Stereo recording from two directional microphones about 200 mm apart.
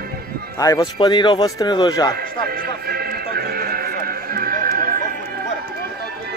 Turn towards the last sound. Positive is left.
turn(degrees=-45)  # may be behind; listen again after turning